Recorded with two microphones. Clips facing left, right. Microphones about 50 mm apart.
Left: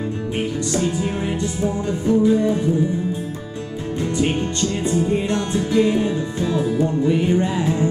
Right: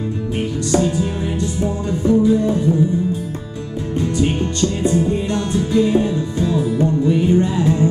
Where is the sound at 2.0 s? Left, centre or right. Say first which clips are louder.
Right 2 dB; left.